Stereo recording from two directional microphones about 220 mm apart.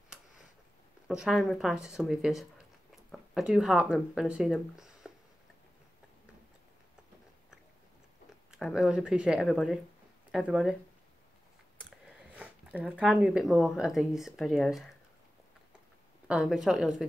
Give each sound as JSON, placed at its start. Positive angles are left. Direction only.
{"t": 1.0, "sound": "speech", "side_deg": 0}
{"t": 8.5, "sound": "speech", "side_deg": 0}
{"t": 12.4, "sound": "speech", "side_deg": -5}
{"t": 16.3, "sound": "speech", "side_deg": -5}